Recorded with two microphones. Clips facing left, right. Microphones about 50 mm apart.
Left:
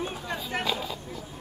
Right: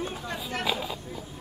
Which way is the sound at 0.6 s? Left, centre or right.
Centre.